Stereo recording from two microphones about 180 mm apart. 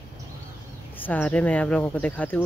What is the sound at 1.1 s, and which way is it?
Speech, 10° left (ahead or behind).